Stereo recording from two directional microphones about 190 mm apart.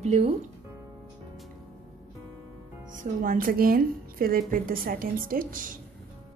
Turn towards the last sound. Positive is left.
turn(degrees=-45)  # may be behind; listen again after turning